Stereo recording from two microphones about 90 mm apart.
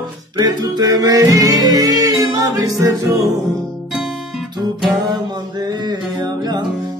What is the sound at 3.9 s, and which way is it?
Guitar, 5° right (ahead or behind).